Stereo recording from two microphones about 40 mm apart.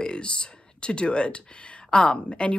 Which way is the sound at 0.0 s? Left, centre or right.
Left.